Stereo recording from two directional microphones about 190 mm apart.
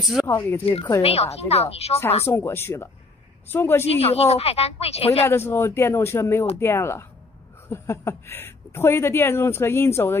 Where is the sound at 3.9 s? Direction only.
30° left (ahead or behind).